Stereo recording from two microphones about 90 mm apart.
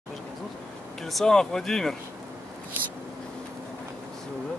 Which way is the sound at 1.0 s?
5° left (ahead or behind).